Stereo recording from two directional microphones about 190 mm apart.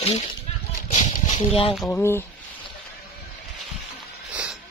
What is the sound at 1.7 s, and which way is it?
Speech, centre (ahead or behind).